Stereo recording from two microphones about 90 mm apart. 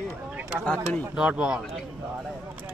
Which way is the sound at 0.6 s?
15° left (ahead or behind).